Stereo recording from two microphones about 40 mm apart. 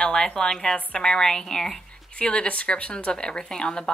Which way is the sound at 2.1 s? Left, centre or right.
Left.